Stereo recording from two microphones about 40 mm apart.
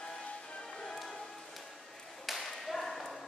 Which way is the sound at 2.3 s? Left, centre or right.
Centre.